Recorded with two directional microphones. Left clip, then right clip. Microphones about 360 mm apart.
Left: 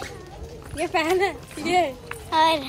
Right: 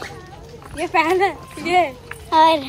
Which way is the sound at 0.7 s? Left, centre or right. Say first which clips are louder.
Right 5 dB; centre.